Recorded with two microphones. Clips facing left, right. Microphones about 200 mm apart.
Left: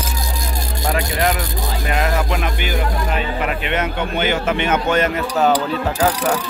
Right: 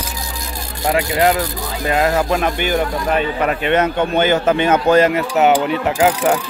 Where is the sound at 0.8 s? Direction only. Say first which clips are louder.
Right 4 dB; 20° right (ahead or behind).